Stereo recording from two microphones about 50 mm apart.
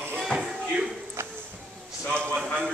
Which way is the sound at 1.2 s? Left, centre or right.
Right.